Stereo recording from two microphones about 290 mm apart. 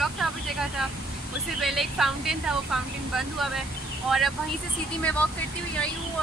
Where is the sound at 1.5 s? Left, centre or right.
Centre.